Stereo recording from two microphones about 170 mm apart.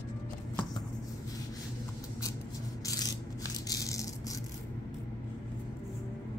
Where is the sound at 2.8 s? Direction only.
20° left (ahead or behind).